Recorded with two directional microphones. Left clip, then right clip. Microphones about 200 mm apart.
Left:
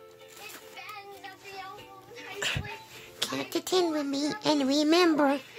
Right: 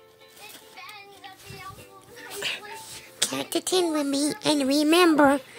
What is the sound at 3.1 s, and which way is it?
Speech, 15° right (ahead or behind).